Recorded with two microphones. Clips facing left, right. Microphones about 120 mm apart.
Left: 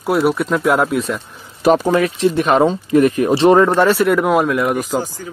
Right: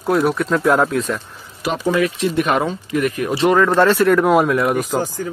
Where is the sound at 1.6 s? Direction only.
40° left (ahead or behind).